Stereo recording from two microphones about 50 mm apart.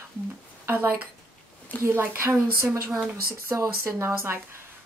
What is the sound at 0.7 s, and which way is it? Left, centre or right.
Speech, right.